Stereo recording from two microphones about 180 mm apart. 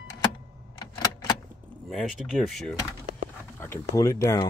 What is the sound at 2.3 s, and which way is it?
Speech, 5° left (ahead or behind).